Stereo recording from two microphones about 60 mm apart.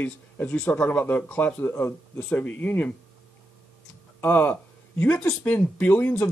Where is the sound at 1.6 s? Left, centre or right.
Left.